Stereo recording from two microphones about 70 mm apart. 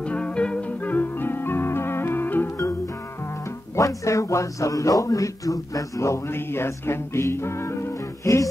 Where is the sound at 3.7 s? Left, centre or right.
Left.